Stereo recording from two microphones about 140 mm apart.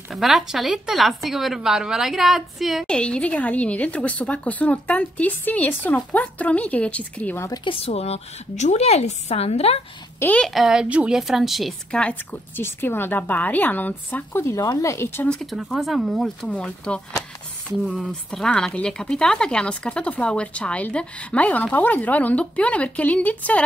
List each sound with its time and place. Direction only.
0.1 s speech: centre (ahead or behind)
7.4 s speech: 30° left (ahead or behind)
7.7 s a woman's voice: 45° left (ahead or behind)
10.1 s a woman's voice: 10° left (ahead or behind)
10.5 s speech: 5° right (ahead or behind); by 15.3 s 15° left (ahead or behind)
15.3 s speech: centre (ahead or behind)